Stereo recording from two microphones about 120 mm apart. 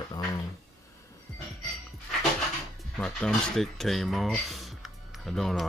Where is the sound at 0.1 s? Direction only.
30° left (ahead or behind).